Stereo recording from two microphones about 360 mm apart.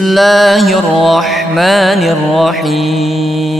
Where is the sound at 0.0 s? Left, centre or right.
Centre.